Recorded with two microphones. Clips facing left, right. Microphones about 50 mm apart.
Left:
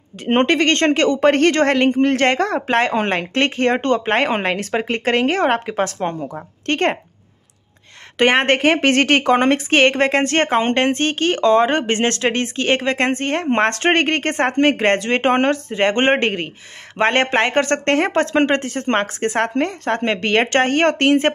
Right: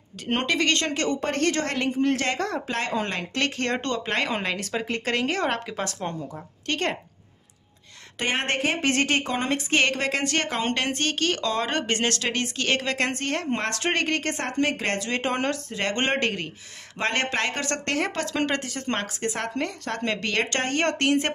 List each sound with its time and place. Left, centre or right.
0.2 s a woman's voice: left
3.3 s a woman's voice: left
8.2 s a woman's voice: left
13.5 s a woman's voice: left